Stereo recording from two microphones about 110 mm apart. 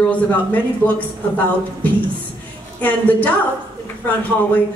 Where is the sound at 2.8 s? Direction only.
15° left (ahead or behind).